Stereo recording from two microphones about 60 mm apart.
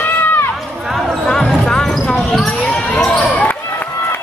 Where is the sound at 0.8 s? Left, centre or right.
Centre.